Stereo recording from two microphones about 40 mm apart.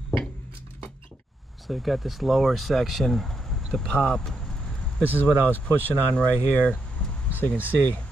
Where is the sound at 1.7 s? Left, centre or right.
Centre.